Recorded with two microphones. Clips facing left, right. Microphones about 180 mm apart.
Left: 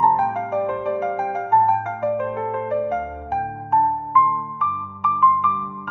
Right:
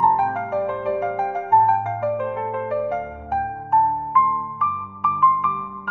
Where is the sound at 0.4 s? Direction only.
20° left (ahead or behind).